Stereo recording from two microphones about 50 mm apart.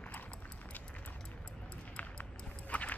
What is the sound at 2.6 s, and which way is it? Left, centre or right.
Rowboat, left.